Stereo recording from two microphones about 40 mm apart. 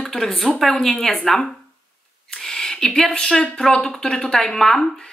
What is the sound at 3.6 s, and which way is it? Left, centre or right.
Speech, left.